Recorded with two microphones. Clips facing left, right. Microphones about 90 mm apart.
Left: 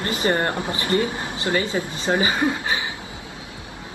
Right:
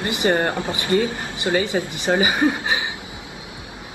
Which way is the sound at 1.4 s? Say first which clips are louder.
Right 3 dB; 20° right (ahead or behind).